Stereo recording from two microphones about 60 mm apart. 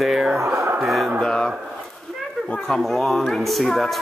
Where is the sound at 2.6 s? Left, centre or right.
Centre.